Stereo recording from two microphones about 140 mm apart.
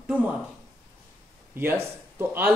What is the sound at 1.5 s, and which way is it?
Speech, 15° right (ahead or behind).